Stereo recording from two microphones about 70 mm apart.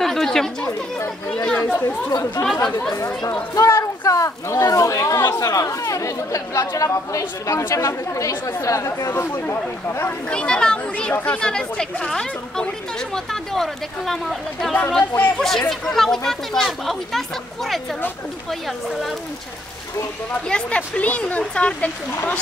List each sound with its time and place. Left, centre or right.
0.0 s speech: centre
1.3 s speech: centre
1.6 s speech: left
2.4 s speech: left
9.1 s speech: left
10.3 s a woman's voice: centre
20.4 s a woman's voice: centre